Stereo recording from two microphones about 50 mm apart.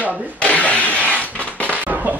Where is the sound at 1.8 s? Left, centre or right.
Right.